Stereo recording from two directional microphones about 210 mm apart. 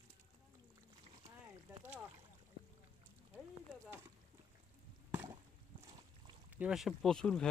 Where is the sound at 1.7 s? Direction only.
10° right (ahead or behind).